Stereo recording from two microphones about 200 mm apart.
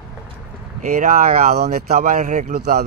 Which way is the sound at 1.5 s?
50° right (ahead or behind).